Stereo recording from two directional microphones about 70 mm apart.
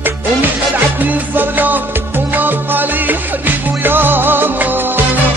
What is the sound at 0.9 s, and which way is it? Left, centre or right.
Music, right.